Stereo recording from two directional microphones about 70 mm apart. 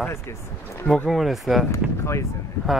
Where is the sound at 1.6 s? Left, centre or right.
Left.